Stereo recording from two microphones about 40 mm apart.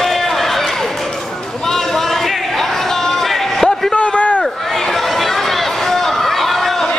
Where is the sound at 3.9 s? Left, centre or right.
Left.